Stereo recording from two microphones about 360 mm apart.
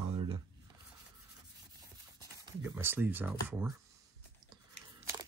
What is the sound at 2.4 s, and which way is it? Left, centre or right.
Speech, centre.